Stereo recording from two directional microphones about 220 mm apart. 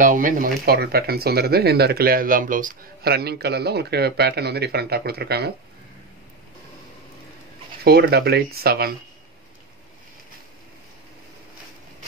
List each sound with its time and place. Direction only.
0.0 s speech: 35° right (ahead or behind)
7.8 s speech: 45° right (ahead or behind)